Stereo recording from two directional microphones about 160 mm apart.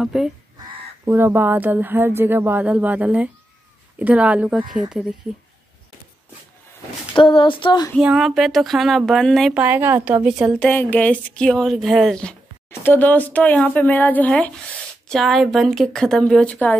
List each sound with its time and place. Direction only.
0.0 s speech: 5° right (ahead or behind)
1.0 s speech: 15° right (ahead or behind)
7.2 s speech: 30° left (ahead or behind)
8.0 s speech: 5° right (ahead or behind)
9.6 s speech: 15° right (ahead or behind)
10.6 s speech: 10° left (ahead or behind)